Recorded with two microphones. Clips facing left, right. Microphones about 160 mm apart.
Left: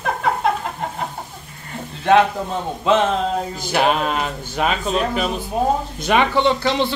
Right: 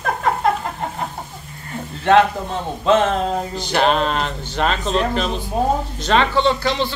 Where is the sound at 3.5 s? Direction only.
5° left (ahead or behind).